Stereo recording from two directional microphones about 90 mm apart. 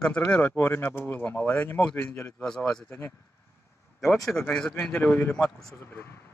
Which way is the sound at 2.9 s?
30° left (ahead or behind).